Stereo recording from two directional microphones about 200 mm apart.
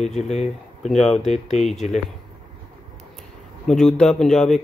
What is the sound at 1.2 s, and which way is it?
Speech, 35° left (ahead or behind).